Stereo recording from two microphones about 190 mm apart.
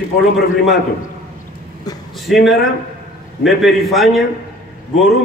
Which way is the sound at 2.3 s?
Centre (ahead or behind).